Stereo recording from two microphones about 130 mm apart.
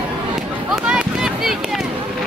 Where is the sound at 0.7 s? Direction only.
5° right (ahead or behind).